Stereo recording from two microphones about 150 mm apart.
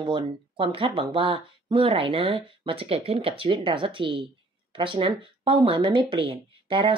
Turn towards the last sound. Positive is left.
turn(degrees=-35)  # may be behind; listen again after turning